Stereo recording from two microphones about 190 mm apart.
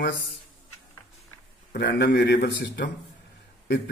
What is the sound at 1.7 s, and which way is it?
A man's voice, 60° left (ahead or behind).